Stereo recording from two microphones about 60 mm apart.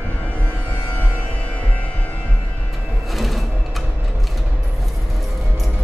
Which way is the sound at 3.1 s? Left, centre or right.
Centre.